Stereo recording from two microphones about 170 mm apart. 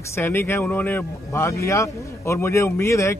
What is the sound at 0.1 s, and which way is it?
Speech, 15° left (ahead or behind).